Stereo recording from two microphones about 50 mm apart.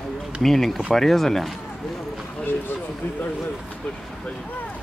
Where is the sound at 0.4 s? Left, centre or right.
Centre.